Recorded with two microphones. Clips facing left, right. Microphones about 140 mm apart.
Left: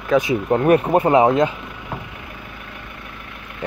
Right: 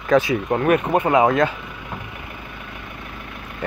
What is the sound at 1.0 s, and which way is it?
Speech, 30° left (ahead or behind).